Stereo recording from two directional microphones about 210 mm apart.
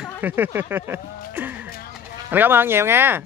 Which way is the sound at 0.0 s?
10° right (ahead or behind).